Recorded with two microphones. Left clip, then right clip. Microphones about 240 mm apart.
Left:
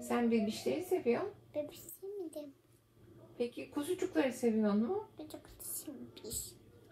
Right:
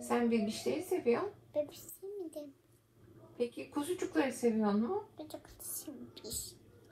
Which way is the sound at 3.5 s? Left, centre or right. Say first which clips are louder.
Right 1 dB; centre.